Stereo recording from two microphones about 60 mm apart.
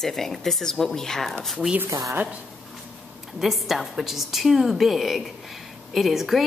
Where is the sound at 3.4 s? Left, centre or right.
Centre.